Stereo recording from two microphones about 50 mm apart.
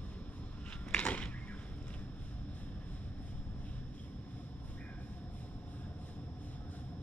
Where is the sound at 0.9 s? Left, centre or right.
Left.